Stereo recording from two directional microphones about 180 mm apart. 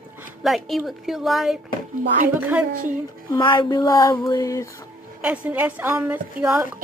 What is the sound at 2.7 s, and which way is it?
Music, 50° right (ahead or behind).